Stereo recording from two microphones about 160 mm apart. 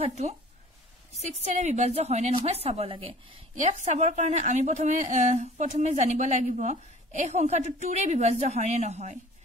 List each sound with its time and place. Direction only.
0.1 s a woman's voice: 45° right (ahead or behind)